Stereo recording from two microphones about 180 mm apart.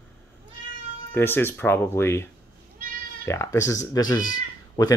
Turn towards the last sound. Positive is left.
turn(degrees=20)  # may be behind; listen again after turning